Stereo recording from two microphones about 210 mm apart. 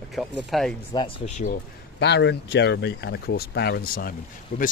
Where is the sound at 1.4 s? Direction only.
50° left (ahead or behind).